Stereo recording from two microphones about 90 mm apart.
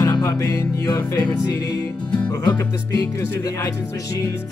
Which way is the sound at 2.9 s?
50° left (ahead or behind).